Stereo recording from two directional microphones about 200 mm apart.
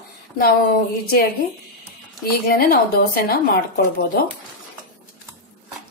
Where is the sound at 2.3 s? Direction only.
50° left (ahead or behind).